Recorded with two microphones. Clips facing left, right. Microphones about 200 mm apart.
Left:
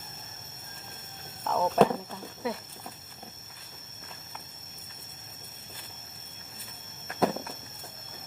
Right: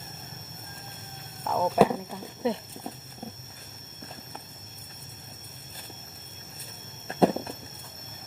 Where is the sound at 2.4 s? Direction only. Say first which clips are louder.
Right 6 dB; 25° right (ahead or behind).